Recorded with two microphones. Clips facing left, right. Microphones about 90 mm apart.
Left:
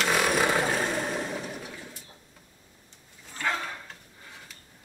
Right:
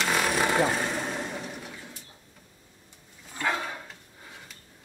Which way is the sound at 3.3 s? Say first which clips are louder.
Right 1 dB; 15° right (ahead or behind).